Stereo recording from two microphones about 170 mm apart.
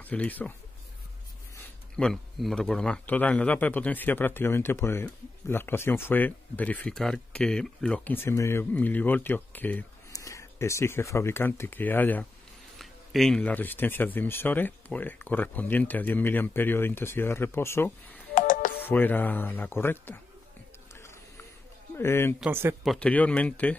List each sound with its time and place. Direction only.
0.0 s speech: 10° left (ahead or behind)
2.0 s a man's voice: centre (ahead or behind)
18.3 s music: 50° left (ahead or behind)
18.8 s a man's voice: 10° left (ahead or behind)
20.9 s a sound: 15° left (ahead or behind)
21.9 s a man's voice: 15° left (ahead or behind)
22.4 s speech: 15° right (ahead or behind)
22.8 s a man's voice: 5° left (ahead or behind)